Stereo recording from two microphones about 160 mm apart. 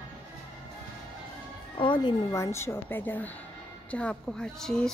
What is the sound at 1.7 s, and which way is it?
A woman's voice, 30° left (ahead or behind).